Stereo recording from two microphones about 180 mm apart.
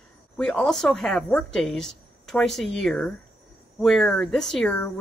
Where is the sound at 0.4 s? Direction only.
5° left (ahead or behind).